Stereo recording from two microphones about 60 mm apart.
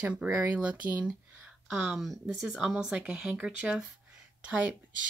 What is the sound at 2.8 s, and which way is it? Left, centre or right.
Speech, centre.